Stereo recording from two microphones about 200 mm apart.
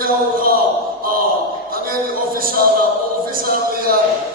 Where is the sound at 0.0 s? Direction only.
45° right (ahead or behind).